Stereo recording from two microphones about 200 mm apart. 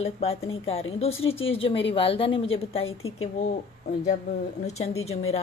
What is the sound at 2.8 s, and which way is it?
Speech, 90° left.